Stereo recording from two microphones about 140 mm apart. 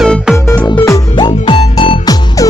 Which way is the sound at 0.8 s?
25° left (ahead or behind).